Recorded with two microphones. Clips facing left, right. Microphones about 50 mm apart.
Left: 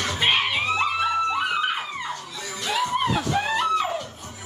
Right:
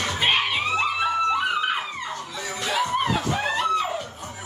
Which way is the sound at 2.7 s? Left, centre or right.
Centre.